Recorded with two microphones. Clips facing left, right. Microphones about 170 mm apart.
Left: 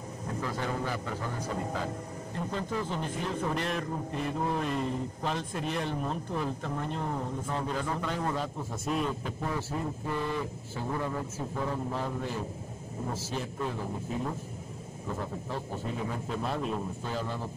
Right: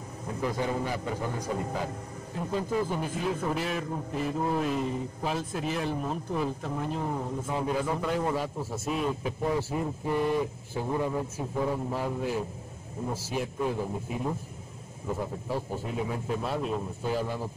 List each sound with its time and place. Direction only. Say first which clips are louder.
0.4 s a man's voice: right 4 dB; 15° right (ahead or behind)
2.3 s a man's voice: right 4 dB; 10° right (ahead or behind)
16.1 s a man's voice: right 2 dB; 5° right (ahead or behind)